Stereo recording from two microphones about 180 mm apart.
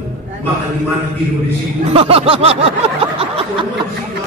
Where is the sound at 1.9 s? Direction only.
30° right (ahead or behind).